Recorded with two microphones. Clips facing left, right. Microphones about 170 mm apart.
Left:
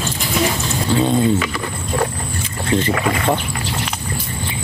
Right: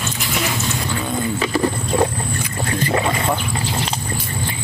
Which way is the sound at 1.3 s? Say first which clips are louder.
Right 4 dB; 30° right (ahead or behind).